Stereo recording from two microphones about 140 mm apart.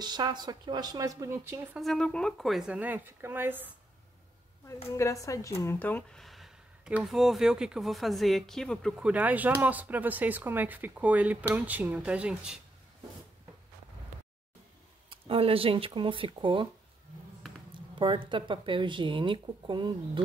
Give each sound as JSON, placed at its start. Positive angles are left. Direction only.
{"t": 0.0, "sound": "a woman's voice", "side_deg": -30}
{"t": 1.8, "sound": "speech", "side_deg": 5}
{"t": 4.9, "sound": "a woman's voice", "side_deg": 20}
{"t": 6.2, "sound": "speech", "side_deg": 0}
{"t": 9.0, "sound": "speech", "side_deg": -10}
{"t": 15.0, "sound": "speech", "side_deg": -40}
{"t": 17.6, "sound": "speech", "side_deg": -35}